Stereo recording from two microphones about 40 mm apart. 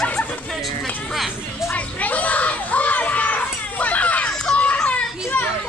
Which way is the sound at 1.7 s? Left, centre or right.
Left.